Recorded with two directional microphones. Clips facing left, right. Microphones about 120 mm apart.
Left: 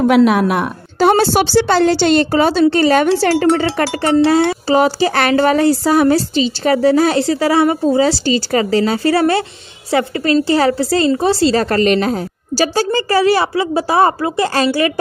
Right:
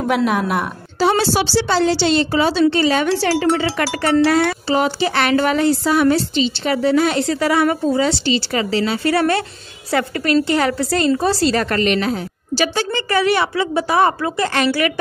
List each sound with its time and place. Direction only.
0.1 s a woman's voice: 75° left (ahead or behind)
0.9 s a woman's voice: 50° left (ahead or behind)
3.8 s a woman's voice: 25° left (ahead or behind)
4.6 s a woman's voice: 40° left (ahead or behind)